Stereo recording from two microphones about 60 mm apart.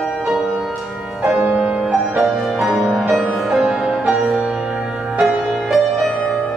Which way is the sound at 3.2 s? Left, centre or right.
Centre.